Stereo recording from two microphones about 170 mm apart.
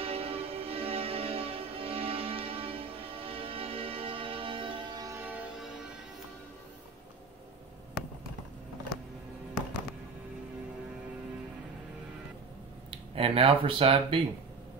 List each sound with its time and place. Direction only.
0.0 s music: 35° right (ahead or behind)
5.2 s music: 10° right (ahead or behind)
12.9 s speech: 35° right (ahead or behind)